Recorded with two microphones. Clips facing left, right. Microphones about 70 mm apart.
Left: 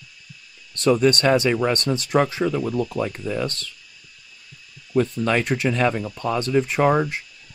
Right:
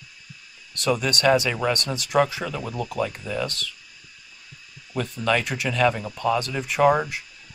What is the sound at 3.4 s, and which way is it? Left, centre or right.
Speech, left.